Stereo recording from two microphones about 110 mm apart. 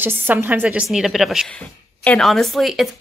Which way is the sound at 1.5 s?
10° left (ahead or behind).